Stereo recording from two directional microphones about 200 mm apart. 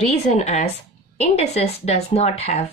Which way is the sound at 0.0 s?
35° left (ahead or behind).